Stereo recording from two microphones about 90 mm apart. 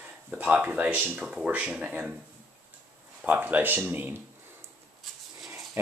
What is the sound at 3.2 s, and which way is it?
Speech, 15° right (ahead or behind).